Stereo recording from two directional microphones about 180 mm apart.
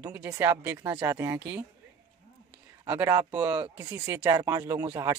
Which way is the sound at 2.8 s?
10° right (ahead or behind).